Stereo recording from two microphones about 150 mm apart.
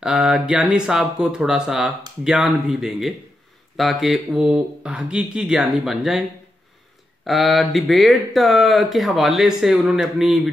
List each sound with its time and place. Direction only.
0.0 s speech: 5° right (ahead or behind)
7.2 s speech: centre (ahead or behind)